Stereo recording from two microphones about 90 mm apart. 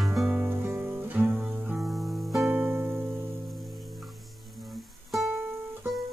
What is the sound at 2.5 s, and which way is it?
Music, 20° right (ahead or behind).